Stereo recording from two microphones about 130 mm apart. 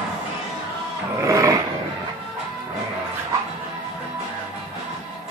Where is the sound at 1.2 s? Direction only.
25° right (ahead or behind).